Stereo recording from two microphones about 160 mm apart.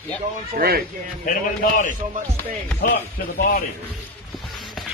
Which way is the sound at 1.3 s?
55° left (ahead or behind).